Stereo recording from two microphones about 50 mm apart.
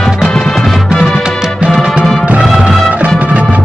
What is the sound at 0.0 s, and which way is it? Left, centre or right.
Music, centre.